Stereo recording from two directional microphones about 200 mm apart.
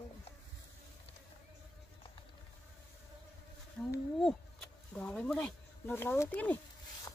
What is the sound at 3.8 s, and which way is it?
Speech, centre (ahead or behind).